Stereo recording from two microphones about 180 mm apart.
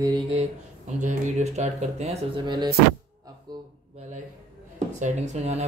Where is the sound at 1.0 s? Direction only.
40° right (ahead or behind).